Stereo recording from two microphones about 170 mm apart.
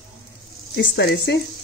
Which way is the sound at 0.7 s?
75° left (ahead or behind).